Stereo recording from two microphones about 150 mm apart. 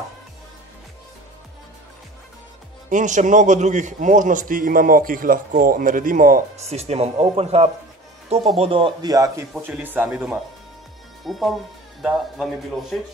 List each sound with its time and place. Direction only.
2.9 s a man's voice: 55° right (ahead or behind)
6.6 s speech: 45° right (ahead or behind); by 9.5 s 25° right (ahead or behind)
9.6 s speech: 10° right (ahead or behind)